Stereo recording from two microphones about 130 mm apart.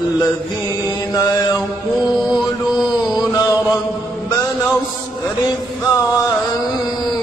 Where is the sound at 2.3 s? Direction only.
5° right (ahead or behind).